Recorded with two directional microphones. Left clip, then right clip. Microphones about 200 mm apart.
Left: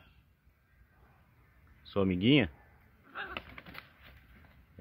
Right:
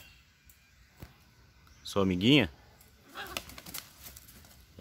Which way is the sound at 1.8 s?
10° right (ahead or behind).